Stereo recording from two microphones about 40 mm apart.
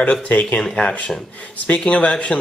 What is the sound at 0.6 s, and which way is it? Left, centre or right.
Speech, left.